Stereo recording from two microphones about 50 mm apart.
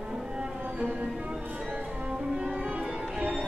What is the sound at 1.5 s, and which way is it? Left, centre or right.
Music, right.